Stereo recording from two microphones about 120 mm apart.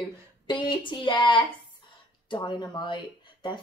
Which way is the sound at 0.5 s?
40° left (ahead or behind).